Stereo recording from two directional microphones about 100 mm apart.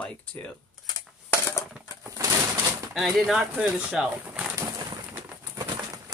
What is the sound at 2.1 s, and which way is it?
Bird, 35° right (ahead or behind).